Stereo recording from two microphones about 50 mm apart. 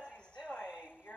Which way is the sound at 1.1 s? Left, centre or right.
Left.